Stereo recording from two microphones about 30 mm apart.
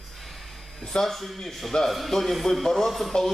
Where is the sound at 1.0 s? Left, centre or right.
Centre.